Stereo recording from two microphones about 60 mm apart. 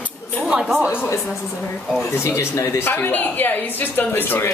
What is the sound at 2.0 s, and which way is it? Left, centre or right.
Speech, left.